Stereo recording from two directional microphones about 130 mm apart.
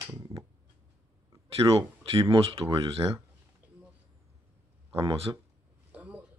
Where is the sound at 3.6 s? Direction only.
15° right (ahead or behind).